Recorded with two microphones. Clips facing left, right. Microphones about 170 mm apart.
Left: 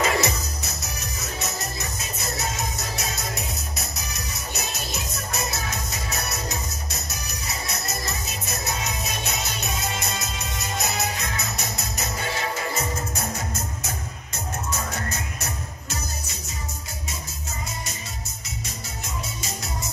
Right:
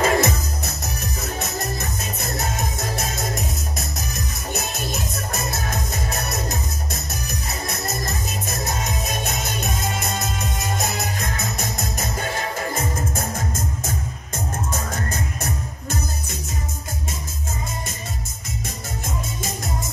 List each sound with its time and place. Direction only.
0.0 s music: 50° right (ahead or behind)